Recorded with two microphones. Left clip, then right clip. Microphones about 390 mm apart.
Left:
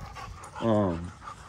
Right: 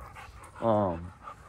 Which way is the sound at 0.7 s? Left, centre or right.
Centre.